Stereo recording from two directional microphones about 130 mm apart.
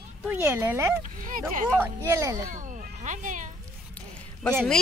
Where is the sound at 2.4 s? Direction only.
80° right.